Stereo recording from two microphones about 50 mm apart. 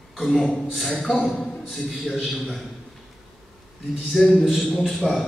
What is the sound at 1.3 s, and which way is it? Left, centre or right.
Speech, centre.